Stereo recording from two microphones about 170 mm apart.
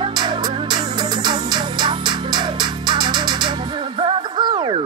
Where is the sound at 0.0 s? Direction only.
25° right (ahead or behind).